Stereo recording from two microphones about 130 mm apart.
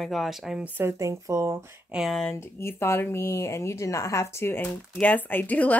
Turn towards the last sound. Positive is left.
turn(degrees=10)  # may be behind; listen again after turning